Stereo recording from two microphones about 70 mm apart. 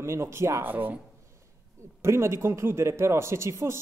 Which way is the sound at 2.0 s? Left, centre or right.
Right.